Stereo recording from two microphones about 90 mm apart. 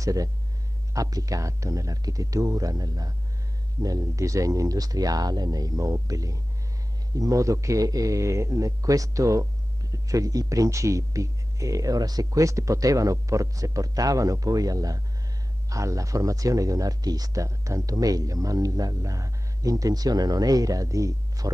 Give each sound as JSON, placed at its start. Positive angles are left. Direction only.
{"t": 0.0, "sound": "speech", "side_deg": -40}